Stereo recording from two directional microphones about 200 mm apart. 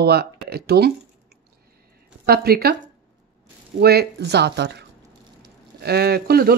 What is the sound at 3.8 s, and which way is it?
Speech, 50° right (ahead or behind).